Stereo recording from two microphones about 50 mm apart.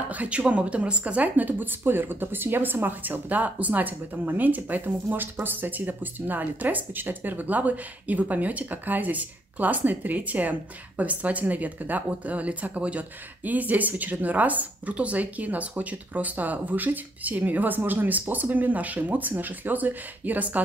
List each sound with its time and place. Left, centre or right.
0.1 s speech: right